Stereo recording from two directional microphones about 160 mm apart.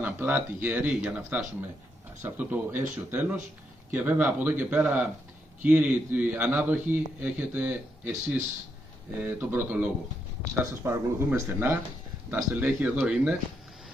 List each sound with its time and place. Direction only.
0.0 s speech: 10° right (ahead or behind)